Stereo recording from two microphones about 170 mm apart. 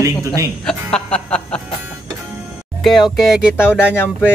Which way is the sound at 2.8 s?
Centre (ahead or behind).